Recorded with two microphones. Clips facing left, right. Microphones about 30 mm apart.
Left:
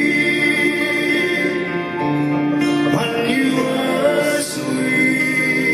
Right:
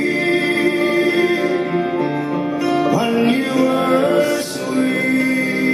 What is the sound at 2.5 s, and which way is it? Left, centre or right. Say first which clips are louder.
Music: right 3 dB; left.